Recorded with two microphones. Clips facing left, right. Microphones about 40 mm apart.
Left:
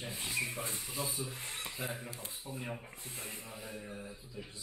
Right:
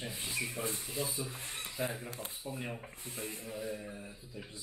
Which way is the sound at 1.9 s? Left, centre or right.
Right.